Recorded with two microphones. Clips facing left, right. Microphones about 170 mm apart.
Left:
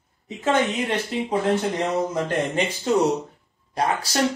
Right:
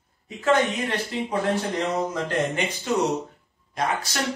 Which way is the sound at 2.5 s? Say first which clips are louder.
Left 4 dB; 35° left (ahead or behind).